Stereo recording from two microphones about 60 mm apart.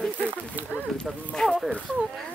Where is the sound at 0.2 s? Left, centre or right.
Right.